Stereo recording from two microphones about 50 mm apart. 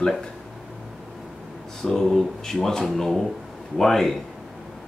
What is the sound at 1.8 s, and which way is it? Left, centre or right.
Speech, centre.